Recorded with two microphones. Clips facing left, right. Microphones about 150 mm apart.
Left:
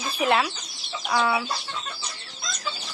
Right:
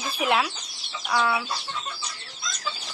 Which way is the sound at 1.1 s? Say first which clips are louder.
Left 1 dB; 10° left (ahead or behind).